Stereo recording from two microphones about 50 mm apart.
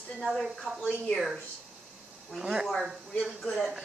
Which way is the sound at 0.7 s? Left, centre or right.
Left.